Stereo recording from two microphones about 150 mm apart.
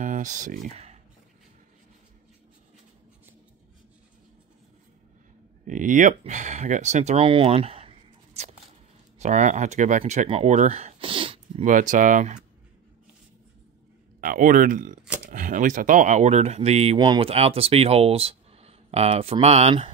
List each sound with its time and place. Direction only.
0.0 s speech: 55° right (ahead or behind)
5.7 s speech: 60° right (ahead or behind); by 7.9 s 40° right (ahead or behind)
9.2 s speech: 50° right (ahead or behind); by 11.6 s 35° right (ahead or behind)
11.6 s speech: 60° right (ahead or behind)
14.2 s speech: 65° right (ahead or behind); by 19.9 s 45° right (ahead or behind)